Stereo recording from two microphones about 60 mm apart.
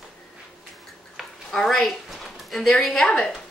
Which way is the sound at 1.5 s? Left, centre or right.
Centre.